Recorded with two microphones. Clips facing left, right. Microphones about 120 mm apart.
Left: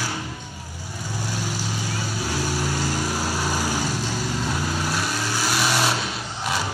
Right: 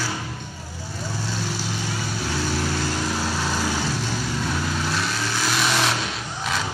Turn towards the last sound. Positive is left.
turn(degrees=5)  # may be behind; listen again after turning